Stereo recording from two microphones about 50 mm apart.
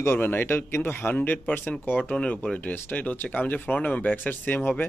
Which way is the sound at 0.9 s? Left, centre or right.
Left.